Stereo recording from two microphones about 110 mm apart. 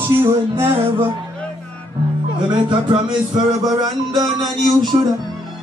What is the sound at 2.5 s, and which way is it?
Speech, 45° right (ahead or behind).